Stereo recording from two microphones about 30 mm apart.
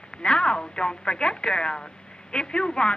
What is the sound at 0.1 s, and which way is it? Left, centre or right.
Speech, left.